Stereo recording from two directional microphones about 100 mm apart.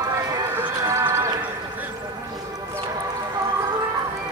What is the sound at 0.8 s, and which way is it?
Music, 25° right (ahead or behind).